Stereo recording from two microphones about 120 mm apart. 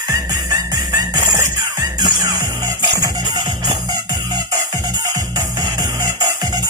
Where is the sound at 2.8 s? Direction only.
35° right (ahead or behind).